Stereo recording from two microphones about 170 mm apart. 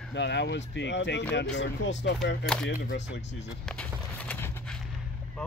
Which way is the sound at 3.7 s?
5° left (ahead or behind).